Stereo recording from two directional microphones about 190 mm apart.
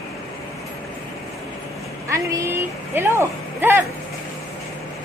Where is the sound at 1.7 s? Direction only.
Centre (ahead or behind).